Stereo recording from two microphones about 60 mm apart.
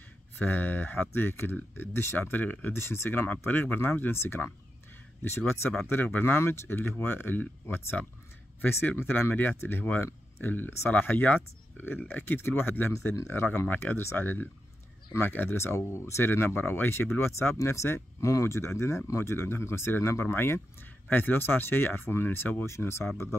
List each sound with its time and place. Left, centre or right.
0.4 s speech: left
2.7 s speech: left
3.4 s speech: left
5.5 s speech: left
21.1 s speech: left